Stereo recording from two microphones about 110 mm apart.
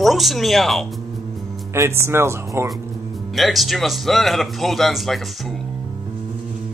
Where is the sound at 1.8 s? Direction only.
25° right (ahead or behind).